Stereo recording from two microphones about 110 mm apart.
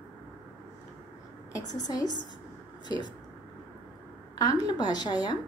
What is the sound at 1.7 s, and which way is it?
Speech, 35° left (ahead or behind).